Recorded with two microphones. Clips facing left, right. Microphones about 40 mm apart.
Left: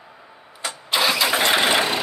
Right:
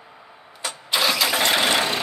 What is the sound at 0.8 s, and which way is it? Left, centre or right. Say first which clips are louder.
Engine starting: left 1 dB; centre.